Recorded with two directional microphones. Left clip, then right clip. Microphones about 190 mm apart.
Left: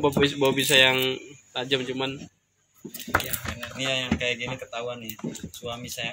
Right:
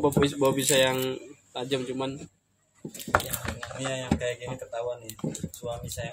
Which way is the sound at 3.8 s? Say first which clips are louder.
Left 4 dB; 50° right (ahead or behind).